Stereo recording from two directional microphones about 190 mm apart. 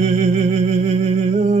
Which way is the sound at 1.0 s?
35° right (ahead or behind).